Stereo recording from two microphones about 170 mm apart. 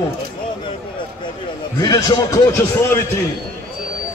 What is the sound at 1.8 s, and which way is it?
A man's voice, 20° left (ahead or behind).